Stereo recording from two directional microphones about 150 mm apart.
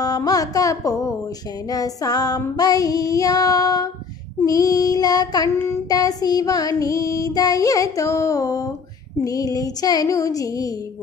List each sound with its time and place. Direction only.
0.0 s child singing: 25° left (ahead or behind)